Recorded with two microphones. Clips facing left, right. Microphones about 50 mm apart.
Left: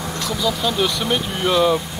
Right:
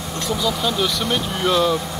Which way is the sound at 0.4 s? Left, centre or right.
Centre.